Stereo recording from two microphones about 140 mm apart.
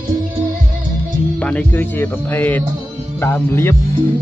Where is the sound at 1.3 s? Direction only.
10° left (ahead or behind).